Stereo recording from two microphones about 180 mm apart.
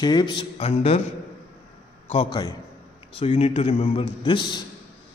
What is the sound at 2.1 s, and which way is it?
Speech, 30° left (ahead or behind).